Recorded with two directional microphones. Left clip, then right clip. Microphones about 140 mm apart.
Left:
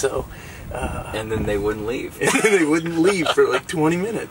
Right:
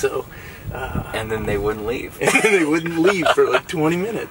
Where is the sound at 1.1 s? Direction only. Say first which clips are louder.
Right 1 dB; 10° right (ahead or behind).